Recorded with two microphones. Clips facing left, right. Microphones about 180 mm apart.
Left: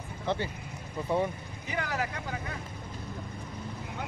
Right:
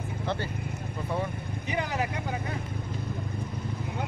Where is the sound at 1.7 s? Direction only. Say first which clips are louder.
Right 2 dB; 20° right (ahead or behind).